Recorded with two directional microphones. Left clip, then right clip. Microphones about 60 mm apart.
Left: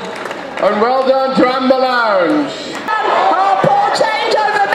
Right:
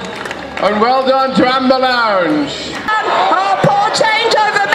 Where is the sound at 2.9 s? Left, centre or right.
Right.